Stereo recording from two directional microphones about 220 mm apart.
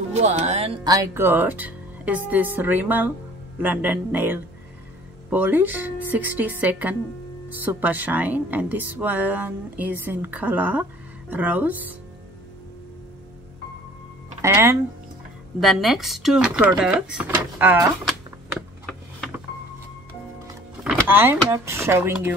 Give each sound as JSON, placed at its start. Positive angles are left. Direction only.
{"t": 0.1, "sound": "music", "side_deg": -30}
{"t": 0.8, "sound": "speech", "side_deg": -15}
{"t": 14.4, "sound": "speech", "side_deg": -10}
{"t": 15.6, "sound": "speech", "side_deg": 0}
{"t": 21.1, "sound": "speech", "side_deg": -10}